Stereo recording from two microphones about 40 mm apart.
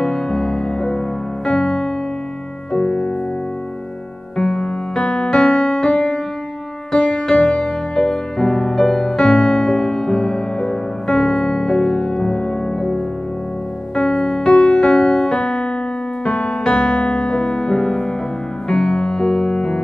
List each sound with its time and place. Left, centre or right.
0.0 s music: left
4.4 s music: left